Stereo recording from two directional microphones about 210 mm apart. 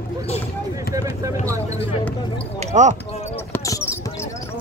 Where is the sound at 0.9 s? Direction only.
15° right (ahead or behind).